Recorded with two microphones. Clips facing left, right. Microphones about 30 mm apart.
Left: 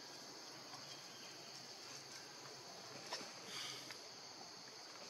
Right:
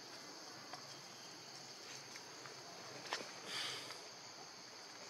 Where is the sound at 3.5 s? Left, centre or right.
Right.